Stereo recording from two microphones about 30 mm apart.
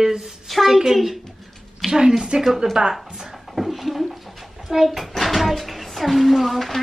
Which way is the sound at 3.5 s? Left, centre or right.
Centre.